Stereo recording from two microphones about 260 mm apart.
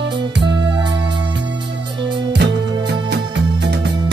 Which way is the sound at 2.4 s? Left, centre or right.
Right.